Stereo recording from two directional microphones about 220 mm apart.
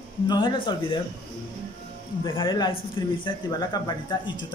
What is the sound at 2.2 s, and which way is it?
A man's voice, 20° left (ahead or behind).